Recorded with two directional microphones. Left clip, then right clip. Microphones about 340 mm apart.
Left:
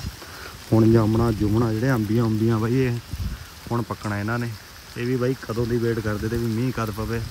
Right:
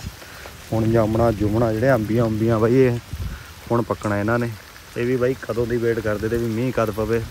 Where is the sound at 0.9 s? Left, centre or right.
Centre.